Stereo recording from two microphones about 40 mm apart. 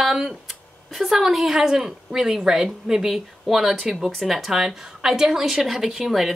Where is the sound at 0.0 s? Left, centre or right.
Centre.